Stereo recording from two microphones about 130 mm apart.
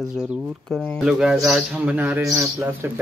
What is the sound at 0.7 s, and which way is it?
Speech, 10° left (ahead or behind).